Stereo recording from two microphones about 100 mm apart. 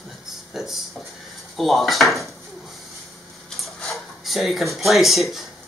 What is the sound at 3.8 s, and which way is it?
Speech, centre (ahead or behind).